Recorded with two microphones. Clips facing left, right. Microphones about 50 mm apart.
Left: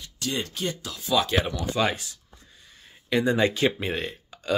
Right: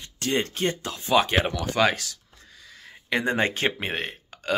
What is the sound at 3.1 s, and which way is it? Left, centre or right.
Speech, right.